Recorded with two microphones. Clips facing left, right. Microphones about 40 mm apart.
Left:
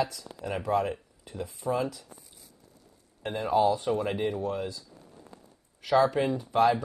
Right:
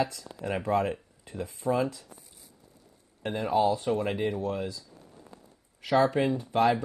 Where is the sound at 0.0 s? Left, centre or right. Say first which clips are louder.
Right 1 dB; right.